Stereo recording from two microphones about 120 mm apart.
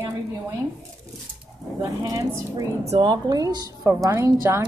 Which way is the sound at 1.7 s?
30° right (ahead or behind).